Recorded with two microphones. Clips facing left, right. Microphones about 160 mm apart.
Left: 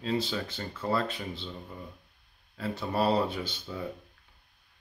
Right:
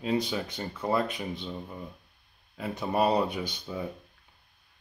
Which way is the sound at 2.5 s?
15° right (ahead or behind).